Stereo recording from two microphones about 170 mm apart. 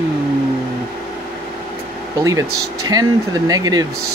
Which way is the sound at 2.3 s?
20° right (ahead or behind).